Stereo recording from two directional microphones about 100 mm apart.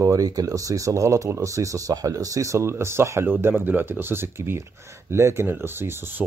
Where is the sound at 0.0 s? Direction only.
35° right (ahead or behind).